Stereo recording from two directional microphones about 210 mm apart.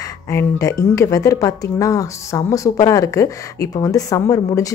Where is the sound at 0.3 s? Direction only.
15° left (ahead or behind).